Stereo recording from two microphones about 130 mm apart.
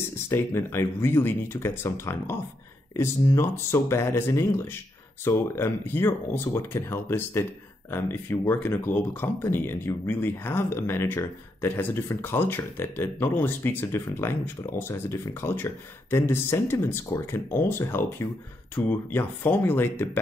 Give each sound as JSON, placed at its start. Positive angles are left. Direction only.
{"t": 0.3, "sound": "speech", "side_deg": 15}